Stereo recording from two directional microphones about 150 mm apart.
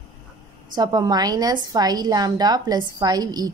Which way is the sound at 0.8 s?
25° right (ahead or behind).